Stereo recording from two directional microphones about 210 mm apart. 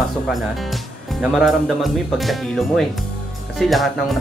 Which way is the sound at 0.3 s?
Centre (ahead or behind).